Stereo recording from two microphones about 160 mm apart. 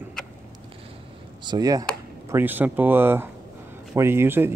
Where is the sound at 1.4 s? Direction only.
25° right (ahead or behind).